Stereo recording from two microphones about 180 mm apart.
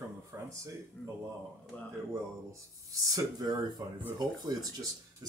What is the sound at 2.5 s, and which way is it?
Speech, 20° right (ahead or behind).